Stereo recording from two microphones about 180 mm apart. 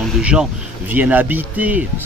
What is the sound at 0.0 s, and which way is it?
Speech, 5° right (ahead or behind).